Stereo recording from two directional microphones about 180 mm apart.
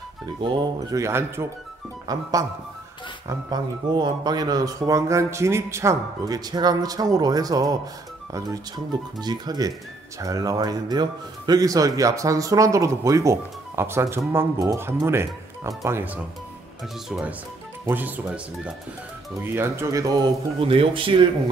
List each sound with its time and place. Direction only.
0.4 s speech: 25° right (ahead or behind)
3.3 s speech: 25° right (ahead or behind)
20.6 s speech: 30° right (ahead or behind)